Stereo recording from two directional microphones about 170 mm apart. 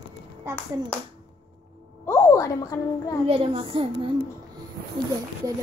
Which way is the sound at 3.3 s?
35° right (ahead or behind).